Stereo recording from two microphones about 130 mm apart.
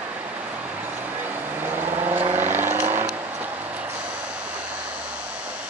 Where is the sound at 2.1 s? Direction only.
15° right (ahead or behind).